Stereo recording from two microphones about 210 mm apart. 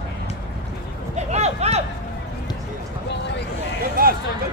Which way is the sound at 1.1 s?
30° right (ahead or behind).